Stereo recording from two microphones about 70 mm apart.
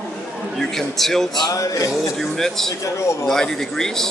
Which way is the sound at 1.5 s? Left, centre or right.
Left.